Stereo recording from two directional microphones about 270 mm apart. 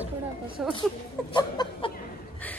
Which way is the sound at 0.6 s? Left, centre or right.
Centre.